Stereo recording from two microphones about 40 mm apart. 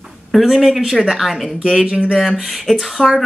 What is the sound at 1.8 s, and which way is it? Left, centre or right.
Speech, right.